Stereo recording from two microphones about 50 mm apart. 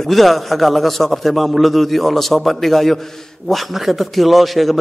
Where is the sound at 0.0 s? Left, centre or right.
Centre.